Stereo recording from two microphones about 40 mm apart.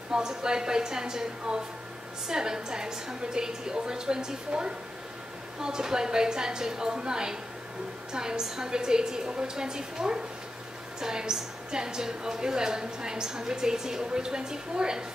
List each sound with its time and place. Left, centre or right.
0.1 s a woman's voice: centre